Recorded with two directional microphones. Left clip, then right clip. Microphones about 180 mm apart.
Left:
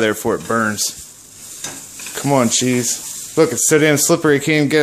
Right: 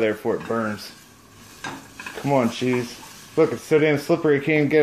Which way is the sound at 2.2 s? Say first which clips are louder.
Left 5 dB; 55° left (ahead or behind).